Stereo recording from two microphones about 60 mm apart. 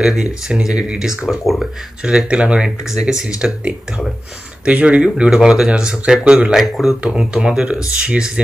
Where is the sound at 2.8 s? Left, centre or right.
Centre.